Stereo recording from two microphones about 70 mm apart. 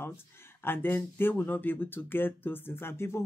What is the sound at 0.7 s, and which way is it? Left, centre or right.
Speech, left.